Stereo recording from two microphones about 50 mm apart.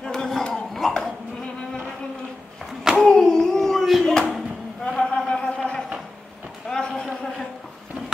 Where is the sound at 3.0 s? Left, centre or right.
Centre.